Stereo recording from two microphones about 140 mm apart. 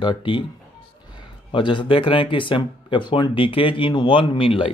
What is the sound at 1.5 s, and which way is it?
Speech, 35° left (ahead or behind).